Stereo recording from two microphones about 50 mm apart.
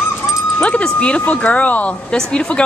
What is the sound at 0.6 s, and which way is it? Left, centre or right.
Speech, left.